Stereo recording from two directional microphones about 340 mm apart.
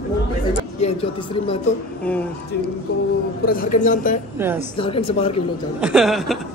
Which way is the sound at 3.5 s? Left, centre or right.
Left.